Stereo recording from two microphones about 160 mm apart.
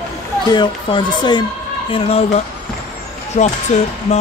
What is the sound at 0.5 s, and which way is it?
Speech, 30° left (ahead or behind).